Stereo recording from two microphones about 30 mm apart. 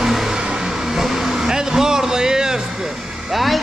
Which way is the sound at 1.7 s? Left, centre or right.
Right.